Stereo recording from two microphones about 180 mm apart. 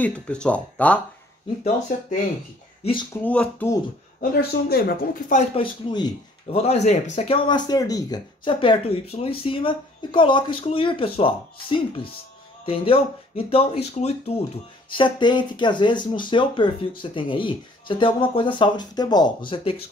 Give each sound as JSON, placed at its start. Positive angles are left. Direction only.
{"t": 0.0, "sound": "speech", "side_deg": 5}
{"t": 2.8, "sound": "speech", "side_deg": 25}
{"t": 3.2, "sound": "speech", "side_deg": 10}
{"t": 4.2, "sound": "speech", "side_deg": 60}
{"t": 5.4, "sound": "speech", "side_deg": 30}
{"t": 6.6, "sound": "speech", "side_deg": 40}
{"t": 7.4, "sound": "speech", "side_deg": 25}
{"t": 12.6, "sound": "speech", "side_deg": 30}